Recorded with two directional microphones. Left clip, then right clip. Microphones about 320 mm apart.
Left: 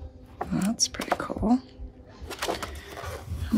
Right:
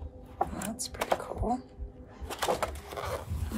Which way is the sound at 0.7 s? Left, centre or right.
Centre.